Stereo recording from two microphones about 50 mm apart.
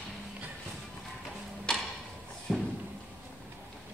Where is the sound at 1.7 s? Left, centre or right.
Centre.